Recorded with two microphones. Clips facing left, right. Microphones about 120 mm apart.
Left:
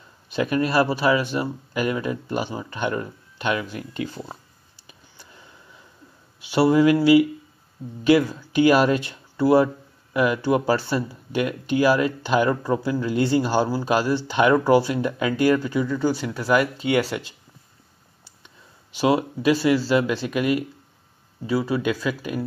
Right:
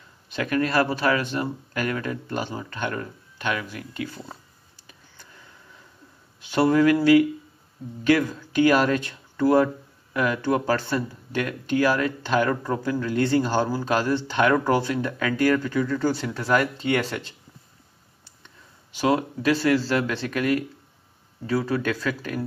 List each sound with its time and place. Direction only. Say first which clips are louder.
0.3 s speech: left 2 dB; 15° left (ahead or behind)
4.8 s a sound: left 2 dB; 20° left (ahead or behind)
6.5 s speech: left 2 dB; 10° left (ahead or behind)
15.9 s speech: left 1 dB; 5° left (ahead or behind)
18.9 s speech: left 2 dB; 15° left (ahead or behind)